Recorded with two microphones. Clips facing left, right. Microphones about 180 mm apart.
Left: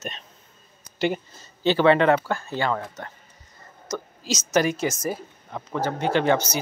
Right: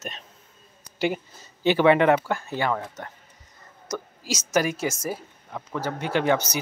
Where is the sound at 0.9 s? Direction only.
10° right (ahead or behind).